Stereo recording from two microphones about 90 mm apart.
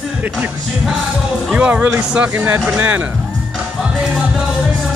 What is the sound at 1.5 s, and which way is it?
Speech, 15° right (ahead or behind).